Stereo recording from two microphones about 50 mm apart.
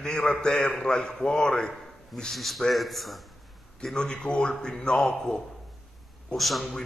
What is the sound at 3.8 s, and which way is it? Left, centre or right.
A man's voice, centre.